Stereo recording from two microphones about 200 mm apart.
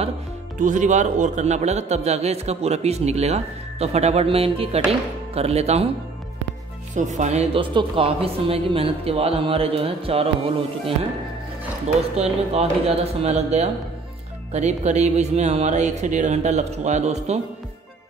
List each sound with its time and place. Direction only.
0.6 s a man's voice: 40° right (ahead or behind)
7.0 s speech: 35° right (ahead or behind)
12.2 s a man's voice: 30° right (ahead or behind)